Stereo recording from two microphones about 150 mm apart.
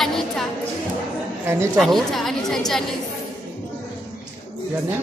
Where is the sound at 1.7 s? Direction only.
Centre (ahead or behind).